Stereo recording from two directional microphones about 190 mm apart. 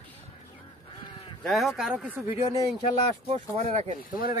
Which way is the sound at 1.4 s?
Centre (ahead or behind).